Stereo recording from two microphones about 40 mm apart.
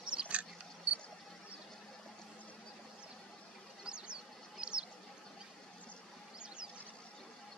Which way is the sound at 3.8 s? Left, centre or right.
Right.